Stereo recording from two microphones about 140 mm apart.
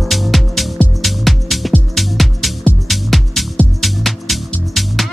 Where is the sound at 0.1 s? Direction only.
Centre (ahead or behind).